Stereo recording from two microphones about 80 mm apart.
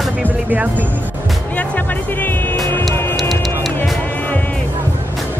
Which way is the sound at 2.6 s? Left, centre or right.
Left.